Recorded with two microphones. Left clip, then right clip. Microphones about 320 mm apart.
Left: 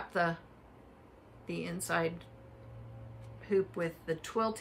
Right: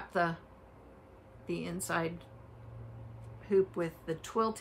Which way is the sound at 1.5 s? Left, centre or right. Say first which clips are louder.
Even; centre.